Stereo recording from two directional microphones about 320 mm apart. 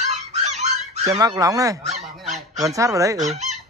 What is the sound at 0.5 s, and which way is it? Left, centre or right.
Honk, centre.